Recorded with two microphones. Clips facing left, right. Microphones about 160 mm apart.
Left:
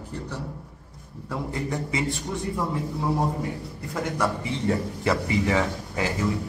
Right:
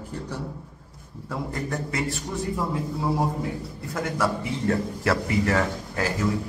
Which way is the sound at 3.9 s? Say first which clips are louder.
Even; centre (ahead or behind).